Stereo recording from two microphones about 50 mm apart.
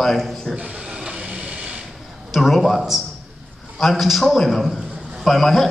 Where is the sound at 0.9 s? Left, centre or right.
Right.